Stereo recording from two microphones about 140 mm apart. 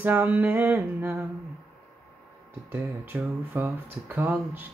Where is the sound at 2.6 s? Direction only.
20° right (ahead or behind).